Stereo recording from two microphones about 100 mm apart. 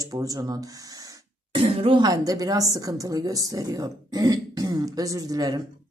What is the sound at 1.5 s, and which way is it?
Music, 70° right (ahead or behind).